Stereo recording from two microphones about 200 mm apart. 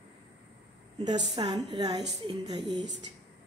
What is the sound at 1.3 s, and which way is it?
A woman's voice, 25° right (ahead or behind).